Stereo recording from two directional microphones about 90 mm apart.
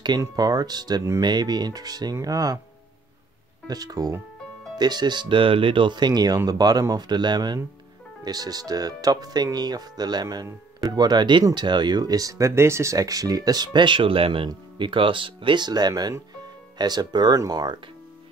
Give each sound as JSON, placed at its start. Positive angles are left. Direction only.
{"t": 0.4, "sound": "speech", "side_deg": -45}
{"t": 3.6, "sound": "speech", "side_deg": -45}
{"t": 14.8, "sound": "speech", "side_deg": -70}
{"t": 15.9, "sound": "speech", "side_deg": -40}